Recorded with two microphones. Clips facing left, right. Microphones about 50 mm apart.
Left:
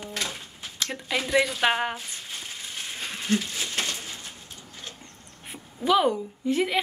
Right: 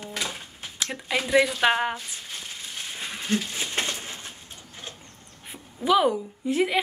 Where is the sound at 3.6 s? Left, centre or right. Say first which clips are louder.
Right 1 dB; right.